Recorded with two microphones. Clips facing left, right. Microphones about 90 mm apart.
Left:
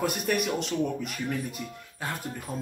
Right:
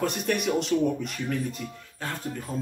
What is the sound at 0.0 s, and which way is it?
Speech, 5° left (ahead or behind).